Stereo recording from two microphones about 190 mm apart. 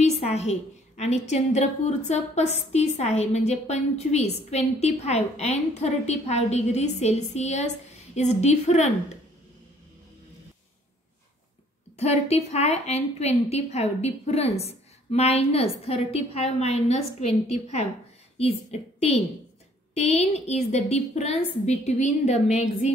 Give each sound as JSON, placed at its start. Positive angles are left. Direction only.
{"t": 0.0, "sound": "a woman's voice", "side_deg": 35}
{"t": 12.0, "sound": "a woman's voice", "side_deg": 35}